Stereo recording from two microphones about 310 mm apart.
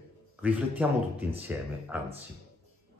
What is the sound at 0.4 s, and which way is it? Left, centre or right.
Speech, centre.